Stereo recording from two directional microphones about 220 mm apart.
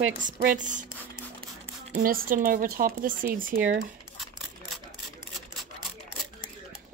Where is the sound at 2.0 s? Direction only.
40° right (ahead or behind).